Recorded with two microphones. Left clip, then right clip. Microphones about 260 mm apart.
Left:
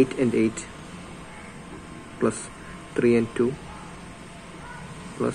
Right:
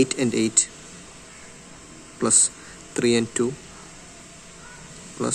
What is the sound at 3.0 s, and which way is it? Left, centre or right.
Speech, right.